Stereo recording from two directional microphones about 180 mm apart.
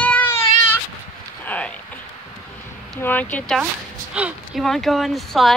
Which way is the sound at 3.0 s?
10° left (ahead or behind).